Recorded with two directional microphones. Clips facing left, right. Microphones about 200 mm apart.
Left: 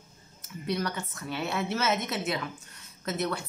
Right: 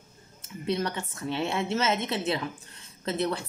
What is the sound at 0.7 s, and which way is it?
A woman's voice, 25° right (ahead or behind).